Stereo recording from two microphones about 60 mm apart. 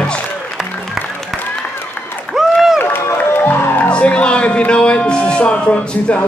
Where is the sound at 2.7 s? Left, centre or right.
Left.